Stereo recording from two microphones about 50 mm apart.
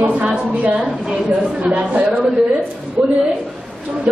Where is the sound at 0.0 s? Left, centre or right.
Right.